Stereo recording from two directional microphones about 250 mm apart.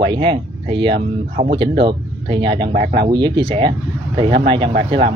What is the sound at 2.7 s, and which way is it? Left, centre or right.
Speech, right.